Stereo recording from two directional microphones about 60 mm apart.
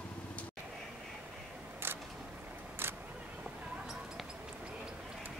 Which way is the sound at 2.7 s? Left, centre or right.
Right.